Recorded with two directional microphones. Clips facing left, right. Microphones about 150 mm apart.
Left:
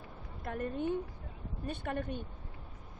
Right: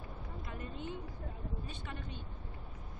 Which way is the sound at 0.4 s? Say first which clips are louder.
Left 10 dB; 55° left (ahead or behind).